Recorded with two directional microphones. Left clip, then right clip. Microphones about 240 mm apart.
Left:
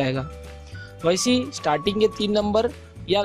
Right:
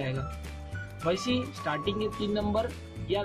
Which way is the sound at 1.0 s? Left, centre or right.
Left.